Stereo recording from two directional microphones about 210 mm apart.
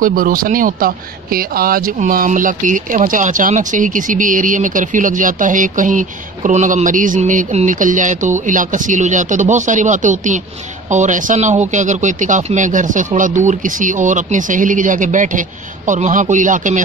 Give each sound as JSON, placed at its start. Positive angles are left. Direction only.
{"t": 0.0, "sound": "speech", "side_deg": -40}